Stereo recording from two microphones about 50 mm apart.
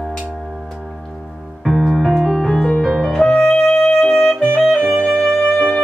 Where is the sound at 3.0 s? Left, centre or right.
Centre.